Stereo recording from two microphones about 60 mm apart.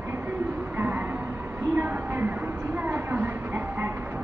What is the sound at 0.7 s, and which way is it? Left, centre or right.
Music, right.